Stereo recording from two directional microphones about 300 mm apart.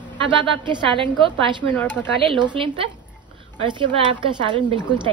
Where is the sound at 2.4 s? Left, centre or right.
Centre.